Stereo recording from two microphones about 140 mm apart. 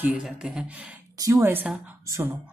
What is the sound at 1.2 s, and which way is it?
A woman's voice, 20° right (ahead or behind).